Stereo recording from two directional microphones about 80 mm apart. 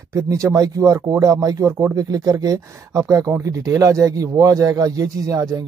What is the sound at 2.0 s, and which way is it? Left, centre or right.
A man's voice, right.